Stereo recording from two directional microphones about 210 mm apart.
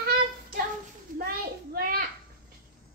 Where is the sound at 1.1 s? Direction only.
45° right (ahead or behind).